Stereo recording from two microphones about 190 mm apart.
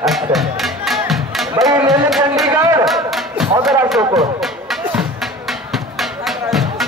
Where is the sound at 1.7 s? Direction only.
20° right (ahead or behind).